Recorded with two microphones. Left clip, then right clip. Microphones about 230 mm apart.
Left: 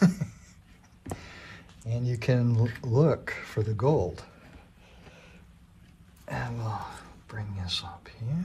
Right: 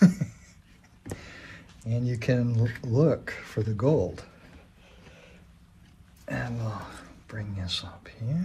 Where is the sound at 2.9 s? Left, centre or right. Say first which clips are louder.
Right 1 dB; left.